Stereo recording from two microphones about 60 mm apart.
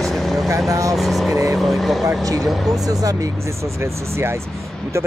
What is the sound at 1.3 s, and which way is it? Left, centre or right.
Speech, right.